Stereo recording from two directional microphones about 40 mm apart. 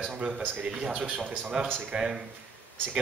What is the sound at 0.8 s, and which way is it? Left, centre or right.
Speech, right.